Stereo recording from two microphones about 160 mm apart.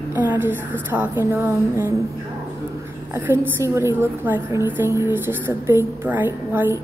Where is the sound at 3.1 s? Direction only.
15° right (ahead or behind).